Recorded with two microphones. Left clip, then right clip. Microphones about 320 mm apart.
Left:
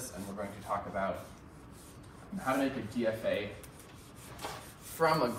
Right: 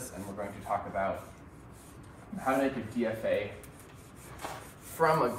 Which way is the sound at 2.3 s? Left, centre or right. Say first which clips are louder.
Right 3 dB; centre.